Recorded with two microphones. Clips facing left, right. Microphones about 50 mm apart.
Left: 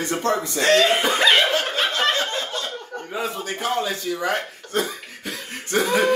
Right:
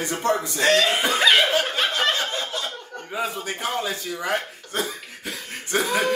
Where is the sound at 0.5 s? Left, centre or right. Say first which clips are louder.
Left 4 dB; centre.